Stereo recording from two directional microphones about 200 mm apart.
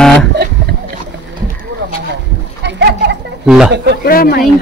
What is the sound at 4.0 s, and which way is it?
Speech, 50° left (ahead or behind).